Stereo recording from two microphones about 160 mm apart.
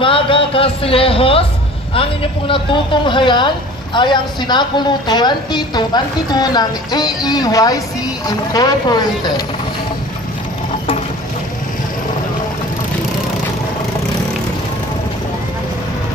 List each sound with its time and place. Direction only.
0.0 s a woman's voice: 35° left (ahead or behind)